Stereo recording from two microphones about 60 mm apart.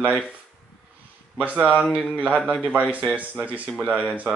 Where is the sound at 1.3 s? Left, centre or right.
Right.